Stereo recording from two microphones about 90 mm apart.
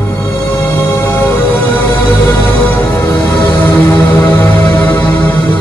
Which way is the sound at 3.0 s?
25° left (ahead or behind).